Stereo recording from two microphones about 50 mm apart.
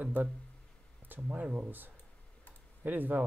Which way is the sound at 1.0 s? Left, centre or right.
Right.